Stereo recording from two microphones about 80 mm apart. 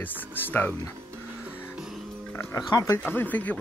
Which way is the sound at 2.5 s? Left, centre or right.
Left.